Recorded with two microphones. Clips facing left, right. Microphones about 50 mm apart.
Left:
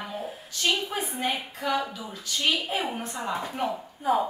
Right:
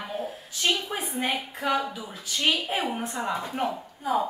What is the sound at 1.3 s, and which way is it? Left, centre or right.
A woman's voice, centre.